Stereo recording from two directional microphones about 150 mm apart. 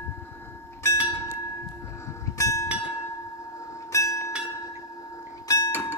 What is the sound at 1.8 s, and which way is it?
Bell, 20° left (ahead or behind).